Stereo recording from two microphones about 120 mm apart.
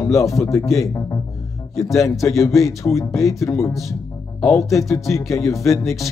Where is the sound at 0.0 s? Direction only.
25° left (ahead or behind).